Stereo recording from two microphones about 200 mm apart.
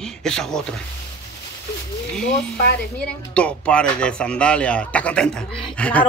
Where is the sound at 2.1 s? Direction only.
5° left (ahead or behind).